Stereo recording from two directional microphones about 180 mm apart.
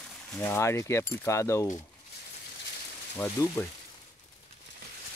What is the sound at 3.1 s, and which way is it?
Speech, 10° left (ahead or behind).